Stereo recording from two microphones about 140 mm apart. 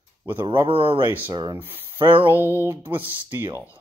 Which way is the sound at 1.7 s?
40° right (ahead or behind).